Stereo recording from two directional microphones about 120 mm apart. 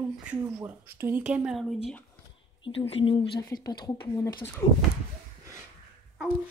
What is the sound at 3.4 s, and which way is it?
Speech, 30° left (ahead or behind).